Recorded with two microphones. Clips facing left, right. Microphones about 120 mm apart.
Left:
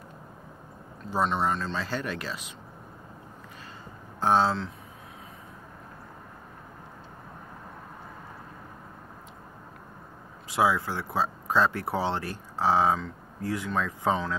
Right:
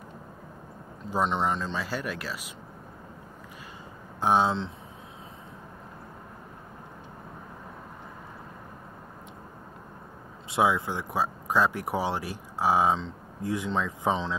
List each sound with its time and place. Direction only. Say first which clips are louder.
1.1 s speech: even; 15° right (ahead or behind)
4.2 s speech: even; 15° right (ahead or behind)
10.5 s speech: even; 20° right (ahead or behind)